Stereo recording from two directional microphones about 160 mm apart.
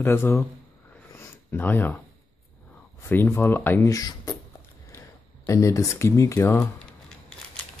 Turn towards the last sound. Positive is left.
turn(degrees=20)  # may be behind; listen again after turning